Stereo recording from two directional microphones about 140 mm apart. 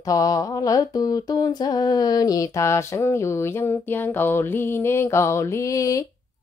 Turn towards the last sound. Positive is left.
turn(degrees=25)  # may be behind; listen again after turning